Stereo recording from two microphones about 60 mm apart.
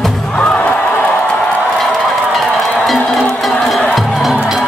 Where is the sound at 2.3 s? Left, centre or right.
Centre.